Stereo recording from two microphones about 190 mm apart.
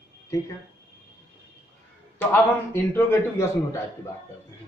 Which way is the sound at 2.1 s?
10° left (ahead or behind).